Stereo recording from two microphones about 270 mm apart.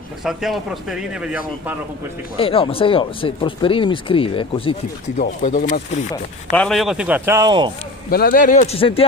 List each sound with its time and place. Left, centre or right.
0.2 s speech: centre
2.3 s speech: centre
6.5 s speech: centre
8.1 s speech: left